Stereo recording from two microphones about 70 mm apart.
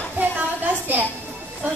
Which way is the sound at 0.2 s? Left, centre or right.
Right.